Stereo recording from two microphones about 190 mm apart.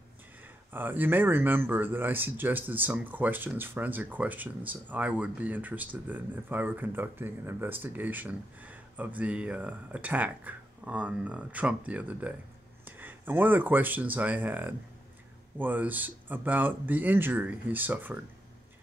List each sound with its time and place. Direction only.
0.7 s speech: 10° right (ahead or behind)